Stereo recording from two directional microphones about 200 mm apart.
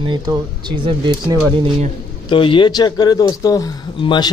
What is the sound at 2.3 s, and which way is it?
Speech, 25° left (ahead or behind).